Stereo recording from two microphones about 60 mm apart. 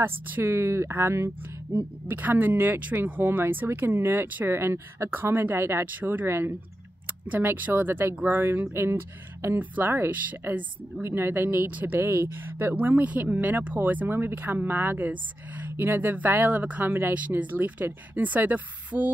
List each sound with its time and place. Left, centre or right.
0.0 s speech: right
1.7 s speech: right
5.9 s speech: right
6.2 s speech: right
7.2 s speech: right
9.6 s speech: right
12.7 s speech: right